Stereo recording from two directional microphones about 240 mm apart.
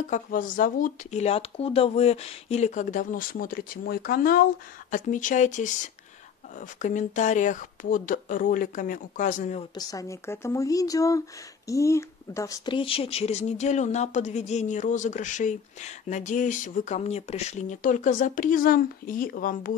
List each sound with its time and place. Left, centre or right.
0.1 s speech: left
9.8 s speech: centre; by 19.8 s left